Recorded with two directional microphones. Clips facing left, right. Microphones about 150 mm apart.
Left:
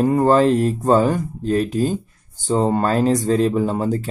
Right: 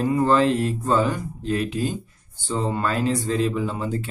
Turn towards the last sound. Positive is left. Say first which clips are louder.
# left 6 dB
turn(degrees=40)  # may be behind; listen again after turning